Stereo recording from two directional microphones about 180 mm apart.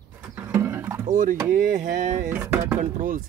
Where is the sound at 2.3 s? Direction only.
15° right (ahead or behind).